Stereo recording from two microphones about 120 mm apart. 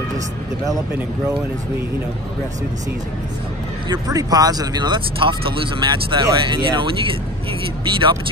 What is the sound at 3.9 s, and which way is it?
Speech, 30° right (ahead or behind).